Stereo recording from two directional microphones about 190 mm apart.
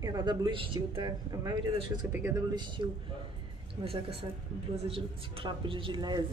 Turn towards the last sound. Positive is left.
turn(degrees=-25)  # may be behind; listen again after turning